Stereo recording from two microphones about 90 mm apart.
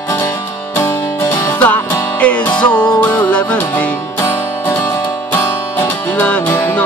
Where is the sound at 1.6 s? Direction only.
15° left (ahead or behind).